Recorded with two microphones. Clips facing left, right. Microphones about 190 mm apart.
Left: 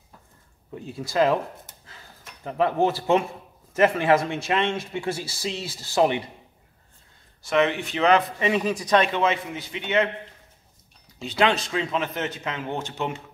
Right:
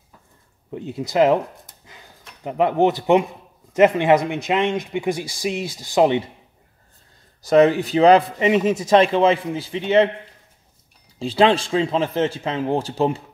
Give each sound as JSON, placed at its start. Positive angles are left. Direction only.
{"t": 0.7, "sound": "speech", "side_deg": -20}
{"t": 1.9, "sound": "a sound", "side_deg": -15}
{"t": 3.7, "sound": "speech", "side_deg": -20}
{"t": 7.4, "sound": "a man's voice", "side_deg": -35}
{"t": 11.1, "sound": "a man's voice", "side_deg": -30}